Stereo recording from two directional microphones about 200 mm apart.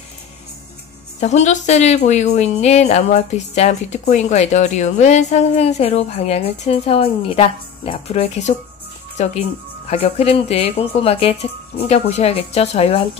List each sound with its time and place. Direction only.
1.2 s speech: 35° left (ahead or behind)